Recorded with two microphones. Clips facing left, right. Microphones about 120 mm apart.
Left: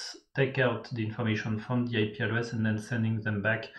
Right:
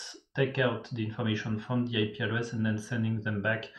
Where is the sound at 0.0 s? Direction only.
10° right (ahead or behind).